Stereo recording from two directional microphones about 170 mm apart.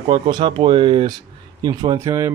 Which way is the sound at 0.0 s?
25° right (ahead or behind).